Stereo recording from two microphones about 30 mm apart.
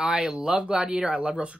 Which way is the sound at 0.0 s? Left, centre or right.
Right.